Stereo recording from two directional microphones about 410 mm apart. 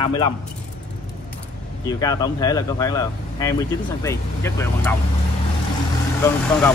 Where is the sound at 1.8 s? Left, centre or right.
Centre.